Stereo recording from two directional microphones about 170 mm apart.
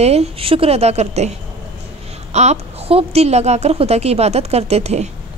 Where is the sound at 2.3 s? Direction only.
40° right (ahead or behind).